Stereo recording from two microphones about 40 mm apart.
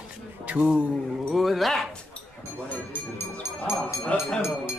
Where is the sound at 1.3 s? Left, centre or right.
Centre.